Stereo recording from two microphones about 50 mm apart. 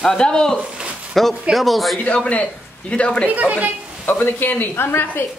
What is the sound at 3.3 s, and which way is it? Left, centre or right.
Speech, right.